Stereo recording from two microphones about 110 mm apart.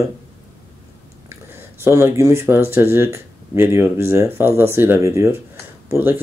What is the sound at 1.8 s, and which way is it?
Speech, 25° right (ahead or behind).